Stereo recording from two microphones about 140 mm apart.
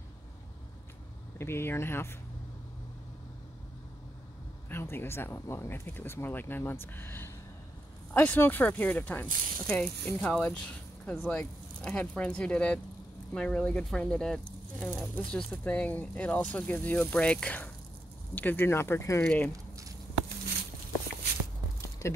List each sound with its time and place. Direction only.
1.4 s speech: 15° left (ahead or behind)
4.6 s speech: 15° left (ahead or behind)
22.0 s speech: 20° left (ahead or behind)